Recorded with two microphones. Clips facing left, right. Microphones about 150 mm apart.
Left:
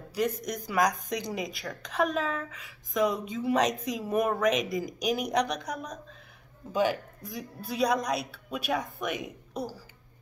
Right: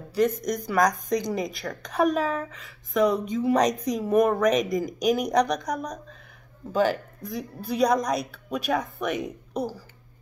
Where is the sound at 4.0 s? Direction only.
5° left (ahead or behind).